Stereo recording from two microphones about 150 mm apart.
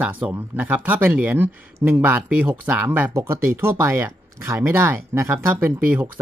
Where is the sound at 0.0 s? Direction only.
10° right (ahead or behind).